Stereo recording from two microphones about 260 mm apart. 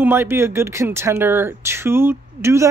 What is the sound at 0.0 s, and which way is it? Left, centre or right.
Speech, centre.